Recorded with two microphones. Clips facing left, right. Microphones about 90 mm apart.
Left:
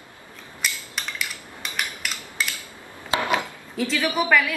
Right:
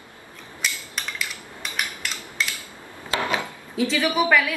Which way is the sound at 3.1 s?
20° left (ahead or behind).